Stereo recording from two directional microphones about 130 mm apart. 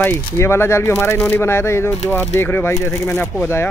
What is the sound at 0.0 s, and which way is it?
Speech, 20° left (ahead or behind).